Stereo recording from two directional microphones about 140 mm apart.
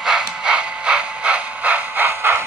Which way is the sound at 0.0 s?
5° right (ahead or behind).